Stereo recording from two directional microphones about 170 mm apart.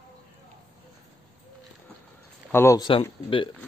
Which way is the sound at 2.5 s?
15° left (ahead or behind).